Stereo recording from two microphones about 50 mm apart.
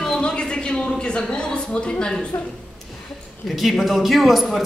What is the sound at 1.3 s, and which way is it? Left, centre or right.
Speech, centre.